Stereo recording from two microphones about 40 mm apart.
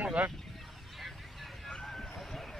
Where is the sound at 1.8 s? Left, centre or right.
Centre.